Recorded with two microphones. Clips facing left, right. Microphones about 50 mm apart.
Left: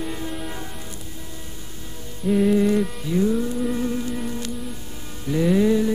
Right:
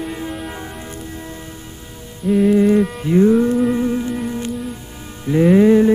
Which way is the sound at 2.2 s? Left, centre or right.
Centre.